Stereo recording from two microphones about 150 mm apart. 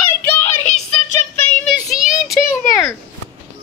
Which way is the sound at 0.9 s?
5° left (ahead or behind).